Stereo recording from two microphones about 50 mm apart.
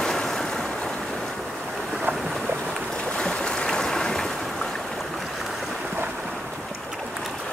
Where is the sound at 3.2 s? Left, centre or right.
Centre.